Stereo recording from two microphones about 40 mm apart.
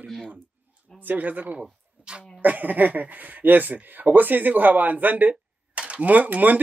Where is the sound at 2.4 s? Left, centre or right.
Right.